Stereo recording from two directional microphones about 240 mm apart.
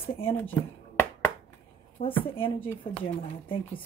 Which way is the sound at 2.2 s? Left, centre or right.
Left.